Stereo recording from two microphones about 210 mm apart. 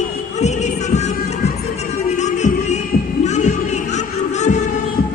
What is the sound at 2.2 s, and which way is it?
Music, 35° left (ahead or behind).